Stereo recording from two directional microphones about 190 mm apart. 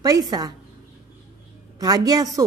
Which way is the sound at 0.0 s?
20° right (ahead or behind).